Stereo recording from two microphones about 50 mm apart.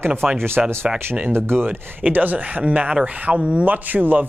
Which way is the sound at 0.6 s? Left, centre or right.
Centre.